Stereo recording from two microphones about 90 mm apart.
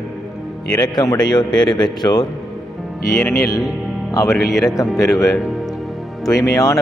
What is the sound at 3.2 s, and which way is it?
Speech, 35° left (ahead or behind).